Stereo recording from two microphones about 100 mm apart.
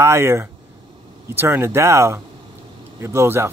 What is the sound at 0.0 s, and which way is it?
Speech, 25° right (ahead or behind).